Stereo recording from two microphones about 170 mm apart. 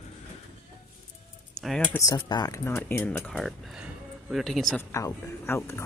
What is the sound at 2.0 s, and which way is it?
Speech, 20° left (ahead or behind).